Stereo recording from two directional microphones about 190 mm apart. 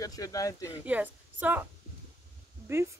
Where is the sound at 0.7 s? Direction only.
10° right (ahead or behind).